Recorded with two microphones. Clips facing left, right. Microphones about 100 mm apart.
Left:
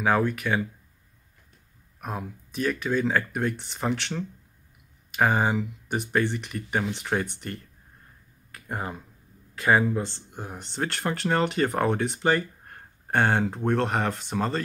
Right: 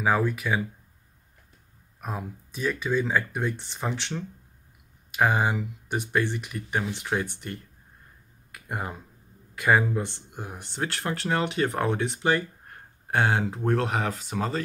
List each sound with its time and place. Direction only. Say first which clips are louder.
0.0 s speech: left 1 dB; centre (ahead or behind)
2.0 s speech: left 1 dB; centre (ahead or behind)
8.5 s a sound: left 1 dB; 10° right (ahead or behind)
9.7 s speech: left 1 dB; centre (ahead or behind)
10.0 s speech: left 1 dB; 15° right (ahead or behind)